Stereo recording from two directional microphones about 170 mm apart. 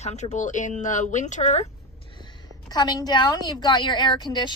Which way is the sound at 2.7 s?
25° left (ahead or behind).